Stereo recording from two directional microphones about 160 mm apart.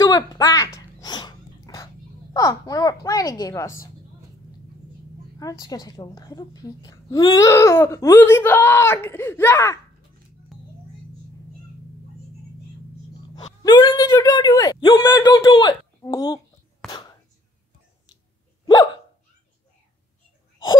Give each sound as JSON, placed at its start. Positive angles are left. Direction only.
{"t": 0.0, "sound": "speech", "side_deg": 25}
{"t": 0.7, "sound": "a sound", "side_deg": 25}
{"t": 2.3, "sound": "speech", "side_deg": 25}
{"t": 5.4, "sound": "a woman's voice", "side_deg": 20}
{"t": 10.5, "sound": "a sound", "side_deg": 0}
{"t": 13.6, "sound": "speech", "side_deg": 25}
{"t": 16.8, "sound": "whispering", "side_deg": 5}